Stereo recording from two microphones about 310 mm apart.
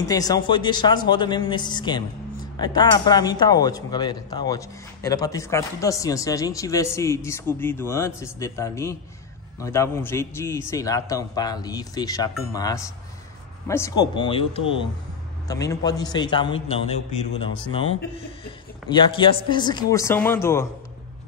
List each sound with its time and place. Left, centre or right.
0.0 s a man's voice: centre